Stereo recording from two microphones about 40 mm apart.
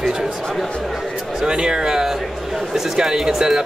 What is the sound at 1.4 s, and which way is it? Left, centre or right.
Speech, right.